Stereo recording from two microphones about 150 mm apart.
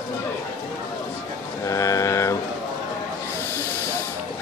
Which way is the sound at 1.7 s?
20° left (ahead or behind).